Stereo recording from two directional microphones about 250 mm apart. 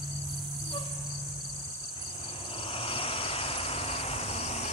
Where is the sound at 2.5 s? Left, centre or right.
Left.